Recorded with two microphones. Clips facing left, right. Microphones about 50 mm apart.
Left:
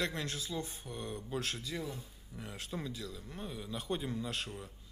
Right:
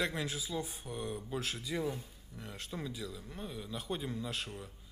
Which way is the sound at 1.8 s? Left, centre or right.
Right.